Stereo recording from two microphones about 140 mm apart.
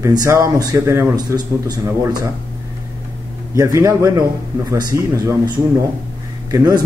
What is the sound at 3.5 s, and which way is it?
Speech, 20° right (ahead or behind).